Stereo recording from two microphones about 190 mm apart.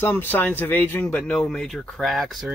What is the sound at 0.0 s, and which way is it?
Speech, 10° left (ahead or behind).